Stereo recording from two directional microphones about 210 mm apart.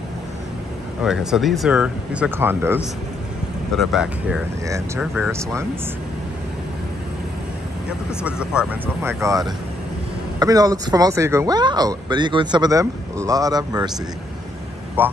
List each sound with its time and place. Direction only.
1.0 s speech: centre (ahead or behind)
4.6 s speech: 15° right (ahead or behind)
8.2 s speech: 5° right (ahead or behind)
15.0 s speech: 10° right (ahead or behind)